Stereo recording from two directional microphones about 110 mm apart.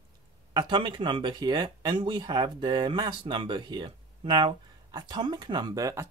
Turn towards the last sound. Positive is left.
turn(degrees=-30)  # may be behind; listen again after turning